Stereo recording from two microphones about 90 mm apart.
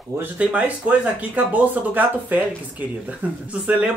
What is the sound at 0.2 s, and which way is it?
Speech, 15° right (ahead or behind).